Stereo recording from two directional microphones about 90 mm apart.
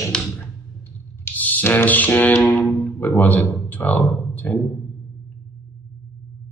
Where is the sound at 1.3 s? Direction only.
20° left (ahead or behind).